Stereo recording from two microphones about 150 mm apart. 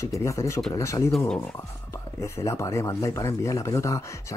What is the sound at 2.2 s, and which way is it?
Speech, 20° left (ahead or behind).